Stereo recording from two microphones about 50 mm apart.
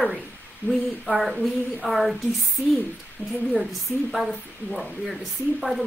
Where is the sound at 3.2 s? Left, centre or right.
Right.